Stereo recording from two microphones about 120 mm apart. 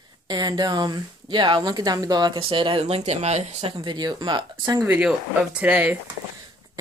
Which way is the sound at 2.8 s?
65° right (ahead or behind).